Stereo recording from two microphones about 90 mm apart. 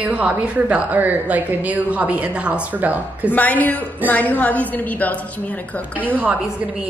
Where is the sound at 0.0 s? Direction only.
15° right (ahead or behind).